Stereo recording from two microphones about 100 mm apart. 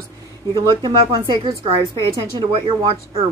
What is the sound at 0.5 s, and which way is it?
A woman's voice, 45° right (ahead or behind).